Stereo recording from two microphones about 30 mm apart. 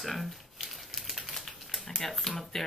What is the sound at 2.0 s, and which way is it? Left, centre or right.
Speech, centre.